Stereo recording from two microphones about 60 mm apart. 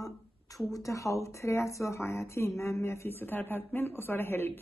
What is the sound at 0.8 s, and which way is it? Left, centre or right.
Speech, left.